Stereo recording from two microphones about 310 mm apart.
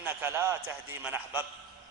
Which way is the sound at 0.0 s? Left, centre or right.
Centre.